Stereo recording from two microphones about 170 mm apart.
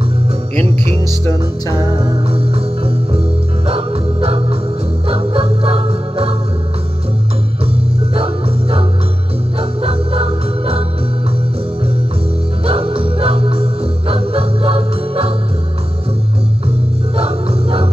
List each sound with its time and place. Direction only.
1.7 s music: 30° right (ahead or behind)
3.6 s organ: 35° right (ahead or behind)
5.0 s music: 35° right (ahead or behind)
8.1 s music: 35° right (ahead or behind)
12.6 s music: 35° right (ahead or behind)
17.2 s music: 35° right (ahead or behind)